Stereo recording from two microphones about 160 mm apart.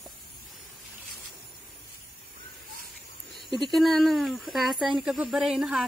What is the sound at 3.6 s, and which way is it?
Speech, centre (ahead or behind).